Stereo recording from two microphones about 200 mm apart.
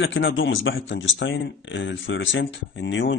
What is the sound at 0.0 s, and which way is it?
Speech, 75° left (ahead or behind).